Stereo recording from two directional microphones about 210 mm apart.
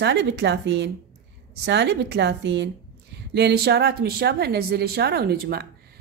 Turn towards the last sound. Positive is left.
turn(degrees=-50)  # may be behind; listen again after turning